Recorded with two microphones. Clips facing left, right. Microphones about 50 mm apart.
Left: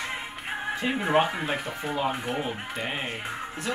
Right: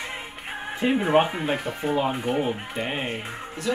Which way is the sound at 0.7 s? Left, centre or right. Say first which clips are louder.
Right 6 dB; centre.